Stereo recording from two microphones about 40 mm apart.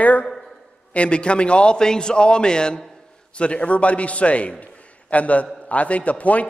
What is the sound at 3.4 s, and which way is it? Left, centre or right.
A man's voice, left.